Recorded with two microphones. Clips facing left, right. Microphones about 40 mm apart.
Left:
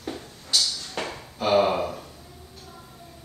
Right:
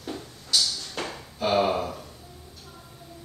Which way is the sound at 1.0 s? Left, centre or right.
Centre.